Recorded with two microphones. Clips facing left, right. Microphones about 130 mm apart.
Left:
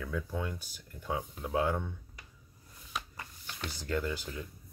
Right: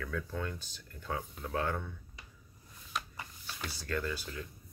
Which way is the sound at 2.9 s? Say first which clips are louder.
Right 1 dB; 5° right (ahead or behind).